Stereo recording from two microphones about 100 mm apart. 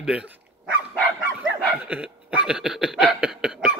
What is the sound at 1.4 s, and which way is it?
Dog, 15° right (ahead or behind).